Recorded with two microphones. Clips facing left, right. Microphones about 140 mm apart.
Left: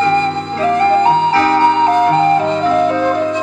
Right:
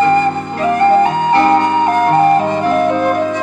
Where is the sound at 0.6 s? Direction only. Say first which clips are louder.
Right 1 dB; 15° right (ahead or behind).